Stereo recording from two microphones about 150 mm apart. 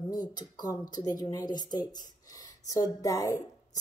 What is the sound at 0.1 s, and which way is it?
Speech, 25° left (ahead or behind).